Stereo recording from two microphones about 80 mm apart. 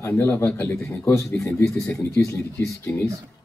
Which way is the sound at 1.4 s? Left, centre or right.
Left.